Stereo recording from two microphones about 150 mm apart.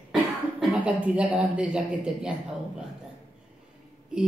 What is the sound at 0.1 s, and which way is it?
Speech, 5° right (ahead or behind).